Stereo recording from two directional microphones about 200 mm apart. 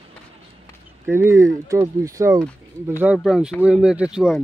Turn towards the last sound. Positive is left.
turn(degrees=-5)  # may be behind; listen again after turning